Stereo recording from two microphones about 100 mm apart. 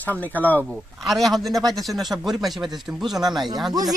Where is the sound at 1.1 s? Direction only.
Centre (ahead or behind).